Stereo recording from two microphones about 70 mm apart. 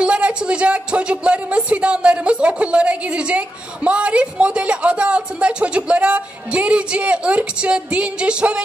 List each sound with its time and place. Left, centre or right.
0.0 s speech: centre